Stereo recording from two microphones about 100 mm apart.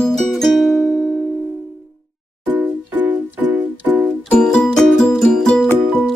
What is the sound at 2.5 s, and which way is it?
Music, 20° right (ahead or behind).